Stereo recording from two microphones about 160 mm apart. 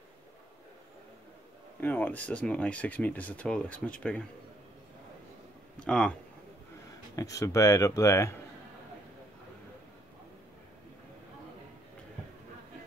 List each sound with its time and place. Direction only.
1.8 s speech: 10° left (ahead or behind)
5.8 s speech: 5° left (ahead or behind)
7.2 s speech: 20° left (ahead or behind)